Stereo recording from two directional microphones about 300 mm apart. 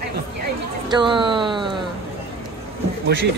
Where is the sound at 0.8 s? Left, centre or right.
Centre.